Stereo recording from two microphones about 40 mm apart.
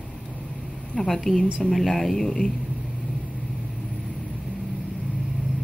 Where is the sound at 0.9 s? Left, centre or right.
Centre.